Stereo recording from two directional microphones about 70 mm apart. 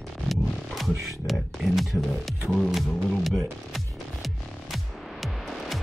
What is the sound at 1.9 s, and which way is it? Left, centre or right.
Speech, left.